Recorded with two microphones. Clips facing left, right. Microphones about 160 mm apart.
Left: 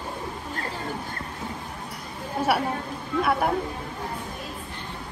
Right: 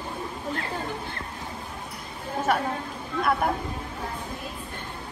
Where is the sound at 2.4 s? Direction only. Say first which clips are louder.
Left 1 dB; 10° left (ahead or behind).